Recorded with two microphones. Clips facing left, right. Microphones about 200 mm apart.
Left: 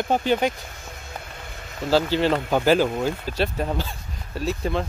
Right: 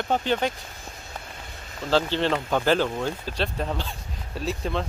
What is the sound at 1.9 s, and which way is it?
Speech, 10° left (ahead or behind).